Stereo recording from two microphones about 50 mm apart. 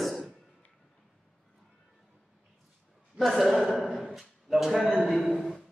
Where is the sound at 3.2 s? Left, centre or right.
Centre.